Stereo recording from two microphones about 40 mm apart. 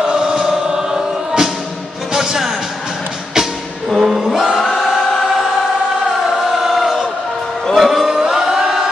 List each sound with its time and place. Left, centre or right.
0.0 s music: right
3.9 s choir: centre
4.2 s chant: centre
4.7 s choir: centre
6.5 s crowd: centre
7.7 s music: centre